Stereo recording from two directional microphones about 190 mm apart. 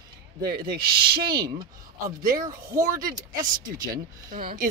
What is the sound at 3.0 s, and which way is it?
Speech, 45° right (ahead or behind).